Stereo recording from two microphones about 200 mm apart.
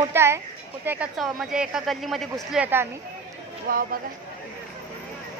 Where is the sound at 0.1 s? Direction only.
10° right (ahead or behind).